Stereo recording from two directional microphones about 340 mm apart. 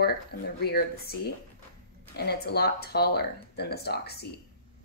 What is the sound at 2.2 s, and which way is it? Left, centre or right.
Speech, left.